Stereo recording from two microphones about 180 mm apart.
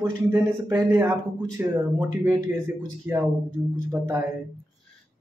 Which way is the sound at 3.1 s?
10° right (ahead or behind).